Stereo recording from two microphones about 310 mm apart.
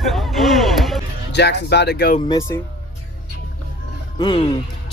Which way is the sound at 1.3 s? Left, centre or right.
Left.